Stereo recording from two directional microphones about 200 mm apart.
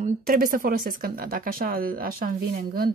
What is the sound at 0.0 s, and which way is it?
Speech, 45° right (ahead or behind).